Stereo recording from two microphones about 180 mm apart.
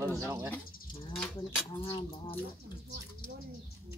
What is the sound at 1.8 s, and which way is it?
Speech, 30° left (ahead or behind).